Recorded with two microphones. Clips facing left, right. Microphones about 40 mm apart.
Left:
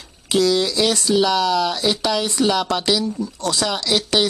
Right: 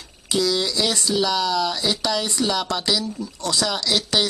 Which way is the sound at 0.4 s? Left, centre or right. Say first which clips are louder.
Left 4 dB; centre.